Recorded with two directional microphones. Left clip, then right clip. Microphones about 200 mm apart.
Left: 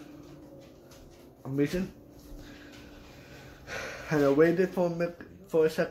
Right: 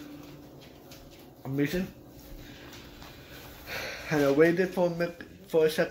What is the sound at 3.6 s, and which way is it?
Speech, 5° left (ahead or behind).